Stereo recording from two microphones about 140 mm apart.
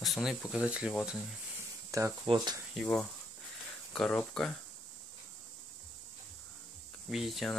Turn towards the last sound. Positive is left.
turn(degrees=0)  # may be behind; listen again after turning